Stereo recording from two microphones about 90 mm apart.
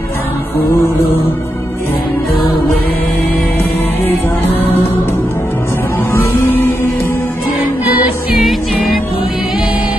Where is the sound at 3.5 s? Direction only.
25° left (ahead or behind).